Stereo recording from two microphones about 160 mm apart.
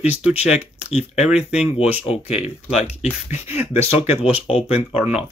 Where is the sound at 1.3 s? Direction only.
5° right (ahead or behind).